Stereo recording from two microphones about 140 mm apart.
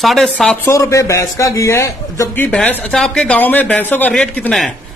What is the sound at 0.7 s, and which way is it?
A man's voice, 20° left (ahead or behind).